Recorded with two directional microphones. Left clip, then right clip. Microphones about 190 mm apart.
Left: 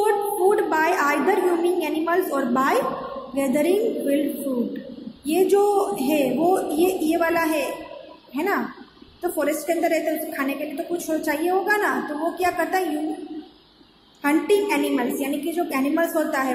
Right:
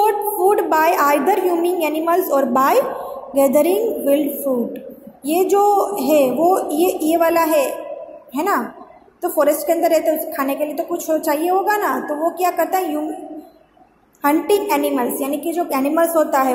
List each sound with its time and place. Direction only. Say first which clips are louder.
0.6 s a sound: right 5 dB; 15° right (ahead or behind)
3.3 s a woman's voice: right 7 dB; 15° right (ahead or behind)
5.2 s a woman's voice: right 4 dB; 15° right (ahead or behind)
14.2 s a woman's voice: right 4 dB; 15° right (ahead or behind)